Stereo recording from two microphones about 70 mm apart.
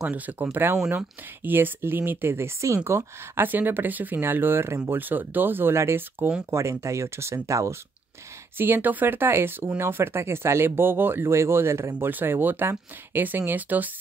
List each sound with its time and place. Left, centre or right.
0.1 s speech: right
4.9 s speech: right
6.5 s speech: right
8.5 s speech: right